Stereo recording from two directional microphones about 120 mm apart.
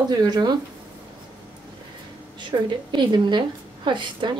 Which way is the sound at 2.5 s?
40° right (ahead or behind).